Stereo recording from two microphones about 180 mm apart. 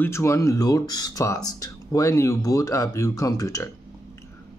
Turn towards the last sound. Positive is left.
turn(degrees=20)  # may be behind; listen again after turning